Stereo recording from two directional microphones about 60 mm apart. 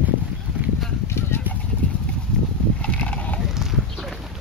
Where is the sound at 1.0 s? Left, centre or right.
Left.